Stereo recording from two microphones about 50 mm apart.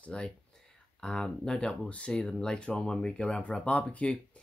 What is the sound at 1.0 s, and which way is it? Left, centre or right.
Speech, centre.